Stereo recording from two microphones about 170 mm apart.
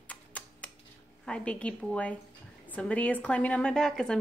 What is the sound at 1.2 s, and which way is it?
A woman's voice, 5° left (ahead or behind).